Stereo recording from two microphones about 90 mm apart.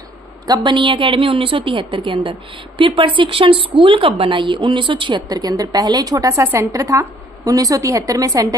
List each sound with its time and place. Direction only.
0.5 s a woman's voice: 60° right (ahead or behind)
5.3 s a woman's voice: 50° right (ahead or behind)
6.4 s a woman's voice: 30° right (ahead or behind)